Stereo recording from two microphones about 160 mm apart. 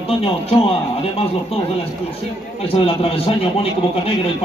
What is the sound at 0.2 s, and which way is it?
A man's voice, 35° left (ahead or behind).